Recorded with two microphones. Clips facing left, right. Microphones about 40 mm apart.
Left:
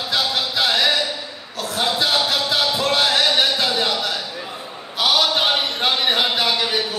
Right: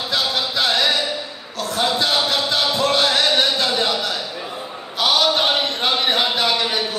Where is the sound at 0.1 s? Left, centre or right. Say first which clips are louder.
Even; centre.